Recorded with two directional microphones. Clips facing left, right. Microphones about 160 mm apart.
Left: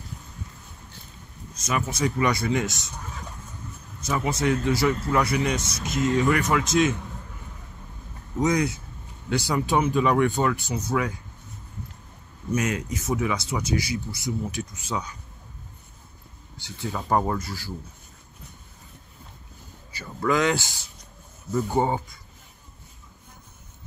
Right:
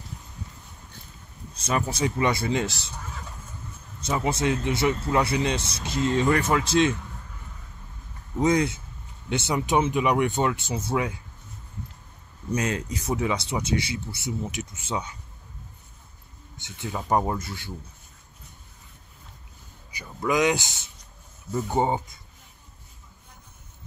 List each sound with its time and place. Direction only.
1.5 s speech: 30° right (ahead or behind)
4.0 s speech: 25° right (ahead or behind)
8.4 s speech: 25° right (ahead or behind)
12.5 s speech: 30° right (ahead or behind)
16.5 s speech: 20° right (ahead or behind)
19.9 s speech: 15° right (ahead or behind)